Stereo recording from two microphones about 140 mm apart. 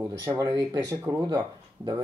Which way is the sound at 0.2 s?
25° right (ahead or behind).